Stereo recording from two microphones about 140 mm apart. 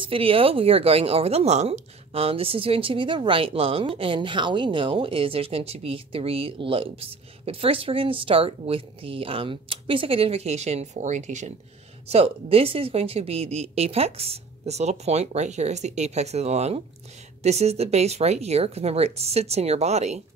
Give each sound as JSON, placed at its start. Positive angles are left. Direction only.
{"t": 0.0, "sound": "a woman's voice", "side_deg": -40}
{"t": 12.1, "sound": "speech", "side_deg": -45}